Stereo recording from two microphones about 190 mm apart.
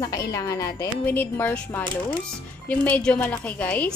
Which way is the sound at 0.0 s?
20° left (ahead or behind).